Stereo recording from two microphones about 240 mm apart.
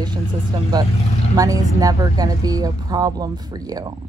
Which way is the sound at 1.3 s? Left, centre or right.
Centre.